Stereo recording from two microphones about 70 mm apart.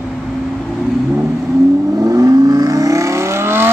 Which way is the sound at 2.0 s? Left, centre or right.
Right.